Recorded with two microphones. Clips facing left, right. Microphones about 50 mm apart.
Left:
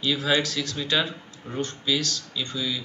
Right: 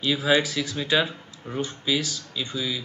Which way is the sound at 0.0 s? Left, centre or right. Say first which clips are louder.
Right 2 dB; centre.